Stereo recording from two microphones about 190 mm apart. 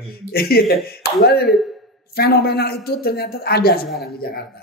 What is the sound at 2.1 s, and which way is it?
A man's voice, 55° left (ahead or behind).